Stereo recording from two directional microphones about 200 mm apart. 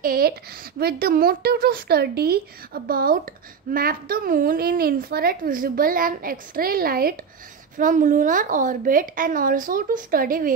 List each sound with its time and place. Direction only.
0.0 s a woman's voice: 45° right (ahead or behind)